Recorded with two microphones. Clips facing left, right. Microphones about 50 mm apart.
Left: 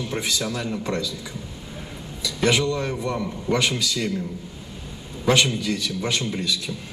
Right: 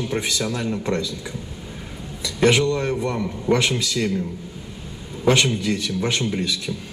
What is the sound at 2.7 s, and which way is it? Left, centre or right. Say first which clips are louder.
Speech: right 3 dB; right.